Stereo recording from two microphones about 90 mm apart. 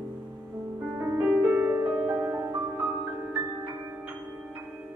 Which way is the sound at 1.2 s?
15° right (ahead or behind).